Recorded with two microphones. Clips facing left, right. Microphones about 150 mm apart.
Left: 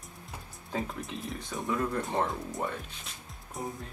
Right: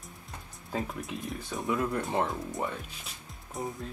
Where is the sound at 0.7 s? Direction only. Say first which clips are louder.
Right 1 dB; centre (ahead or behind).